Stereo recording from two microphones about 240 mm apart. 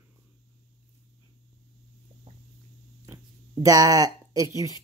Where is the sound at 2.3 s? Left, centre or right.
Right.